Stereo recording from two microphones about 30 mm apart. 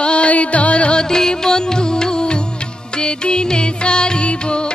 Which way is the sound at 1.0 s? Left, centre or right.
Left.